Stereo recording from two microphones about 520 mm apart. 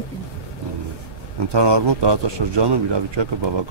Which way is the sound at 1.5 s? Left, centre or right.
Right.